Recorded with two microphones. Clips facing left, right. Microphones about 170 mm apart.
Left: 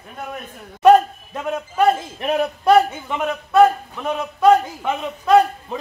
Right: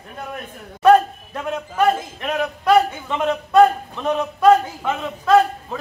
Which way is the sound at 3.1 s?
5° left (ahead or behind).